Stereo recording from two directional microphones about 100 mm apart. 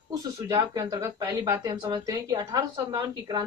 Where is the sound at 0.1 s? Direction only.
35° right (ahead or behind).